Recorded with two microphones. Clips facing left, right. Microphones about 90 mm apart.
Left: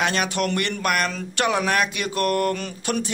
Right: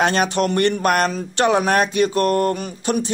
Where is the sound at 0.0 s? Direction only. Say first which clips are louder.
Right 5 dB; 40° right (ahead or behind).